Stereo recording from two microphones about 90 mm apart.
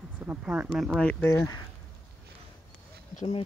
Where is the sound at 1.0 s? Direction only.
15° left (ahead or behind).